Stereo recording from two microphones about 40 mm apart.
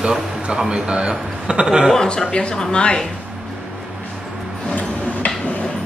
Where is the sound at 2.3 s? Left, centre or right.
Left.